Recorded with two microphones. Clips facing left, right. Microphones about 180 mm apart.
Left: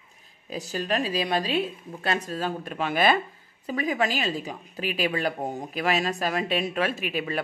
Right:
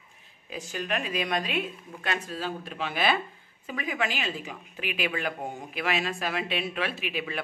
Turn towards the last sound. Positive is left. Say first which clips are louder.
# left 4 dB
turn(degrees=40)  # may be behind; listen again after turning